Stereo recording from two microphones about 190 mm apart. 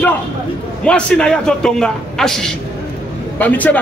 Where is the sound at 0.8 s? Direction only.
5° left (ahead or behind).